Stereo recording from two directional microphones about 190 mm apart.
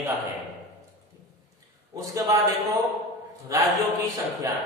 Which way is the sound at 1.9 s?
20° right (ahead or behind).